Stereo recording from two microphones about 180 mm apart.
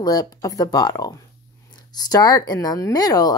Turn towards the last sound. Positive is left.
turn(degrees=20)  # may be behind; listen again after turning